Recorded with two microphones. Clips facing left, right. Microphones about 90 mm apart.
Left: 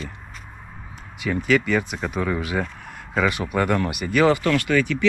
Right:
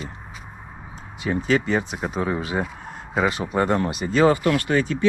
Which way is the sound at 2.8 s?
25° right (ahead or behind).